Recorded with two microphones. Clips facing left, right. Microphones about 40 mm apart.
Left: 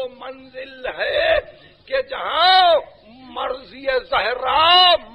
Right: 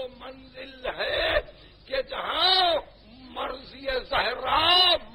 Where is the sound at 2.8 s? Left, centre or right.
Left.